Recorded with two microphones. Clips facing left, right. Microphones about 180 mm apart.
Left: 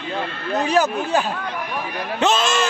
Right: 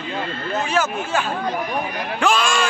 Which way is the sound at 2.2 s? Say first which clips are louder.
Left 1 dB; 25° left (ahead or behind).